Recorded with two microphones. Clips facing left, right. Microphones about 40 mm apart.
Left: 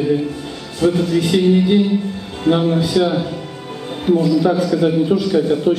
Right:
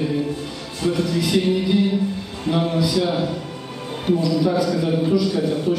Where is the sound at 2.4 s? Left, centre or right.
Left.